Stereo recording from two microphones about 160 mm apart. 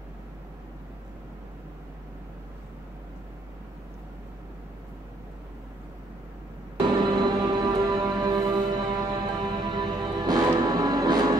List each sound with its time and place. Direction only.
7.0 s music: 25° right (ahead or behind)